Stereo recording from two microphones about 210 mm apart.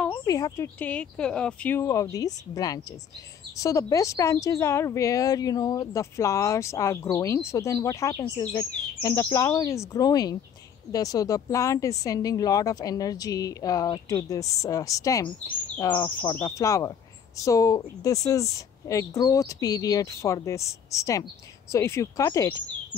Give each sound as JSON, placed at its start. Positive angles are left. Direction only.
{"t": 0.1, "sound": "speech", "side_deg": 15}